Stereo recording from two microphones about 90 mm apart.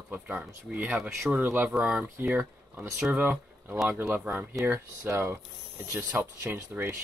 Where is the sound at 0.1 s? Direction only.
20° right (ahead or behind).